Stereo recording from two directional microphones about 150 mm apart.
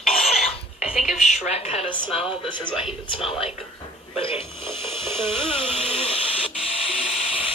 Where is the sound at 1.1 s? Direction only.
45° left (ahead or behind).